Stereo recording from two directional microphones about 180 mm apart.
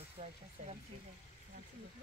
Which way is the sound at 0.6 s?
45° right (ahead or behind).